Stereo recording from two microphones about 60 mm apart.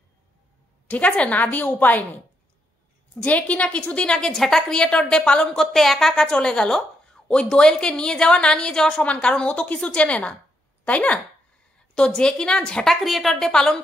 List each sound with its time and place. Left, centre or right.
0.8 s a woman's voice: left
3.2 s a woman's voice: left; by 6.2 s centre
6.2 s a woman's voice: centre
13.0 s a woman's voice: centre